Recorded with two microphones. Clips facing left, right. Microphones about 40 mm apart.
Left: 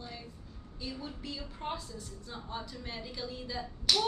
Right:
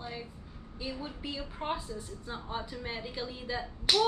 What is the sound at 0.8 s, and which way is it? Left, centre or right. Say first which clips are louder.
A woman's voice: right 2 dB; right.